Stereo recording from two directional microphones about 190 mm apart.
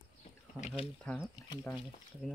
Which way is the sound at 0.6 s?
30° left (ahead or behind).